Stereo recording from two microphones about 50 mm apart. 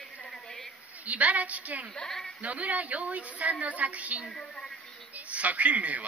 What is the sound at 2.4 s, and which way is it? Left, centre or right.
A woman's voice, right.